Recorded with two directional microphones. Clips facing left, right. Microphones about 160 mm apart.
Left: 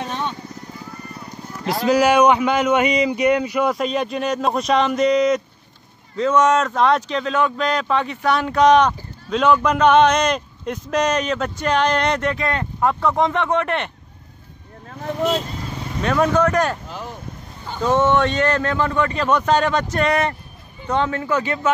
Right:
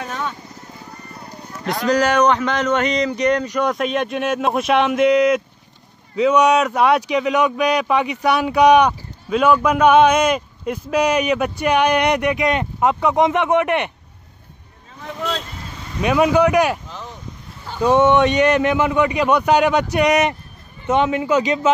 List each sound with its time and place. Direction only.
0.0 s music: 25° left (ahead or behind)
1.9 s speech: 10° left (ahead or behind); by 13.9 s 15° right (ahead or behind)
14.9 s vehicle: 45° left (ahead or behind)
16.0 s speech: 10° right (ahead or behind)